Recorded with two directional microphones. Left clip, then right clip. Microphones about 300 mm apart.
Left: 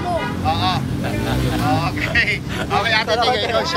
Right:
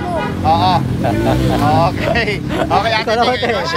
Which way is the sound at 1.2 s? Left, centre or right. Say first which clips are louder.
Right 6 dB; right.